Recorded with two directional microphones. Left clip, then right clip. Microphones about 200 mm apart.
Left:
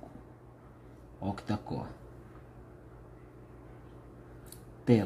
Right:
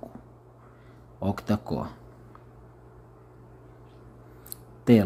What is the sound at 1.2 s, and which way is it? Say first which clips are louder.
Speech: right 7 dB; 35° right (ahead or behind).